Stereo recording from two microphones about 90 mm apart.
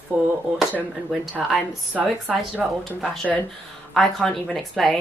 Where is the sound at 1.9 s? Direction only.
15° right (ahead or behind).